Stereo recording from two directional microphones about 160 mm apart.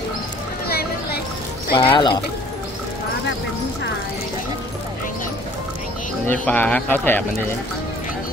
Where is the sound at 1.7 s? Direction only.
35° left (ahead or behind).